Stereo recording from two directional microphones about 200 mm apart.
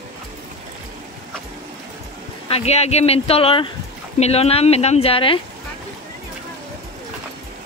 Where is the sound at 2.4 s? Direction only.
30° left (ahead or behind).